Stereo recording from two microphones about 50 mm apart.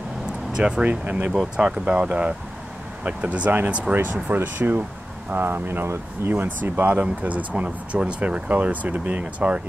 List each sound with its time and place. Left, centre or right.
0.3 s a sound: centre
0.8 s speech: right
1.6 s speech: right